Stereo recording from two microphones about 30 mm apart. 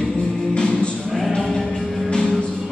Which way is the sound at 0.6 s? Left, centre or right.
Left.